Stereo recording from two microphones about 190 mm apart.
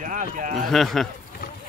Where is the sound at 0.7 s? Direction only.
Centre (ahead or behind).